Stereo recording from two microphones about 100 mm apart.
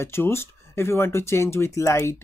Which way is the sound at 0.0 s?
25° left (ahead or behind).